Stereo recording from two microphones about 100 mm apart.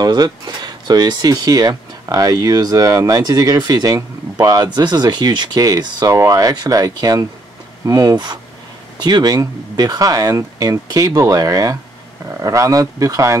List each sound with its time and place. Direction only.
0.0 s speech: 45° right (ahead or behind)